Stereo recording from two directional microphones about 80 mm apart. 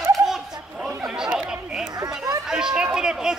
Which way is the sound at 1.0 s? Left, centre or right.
Centre.